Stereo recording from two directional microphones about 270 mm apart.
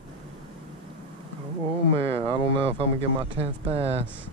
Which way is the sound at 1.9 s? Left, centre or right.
Right.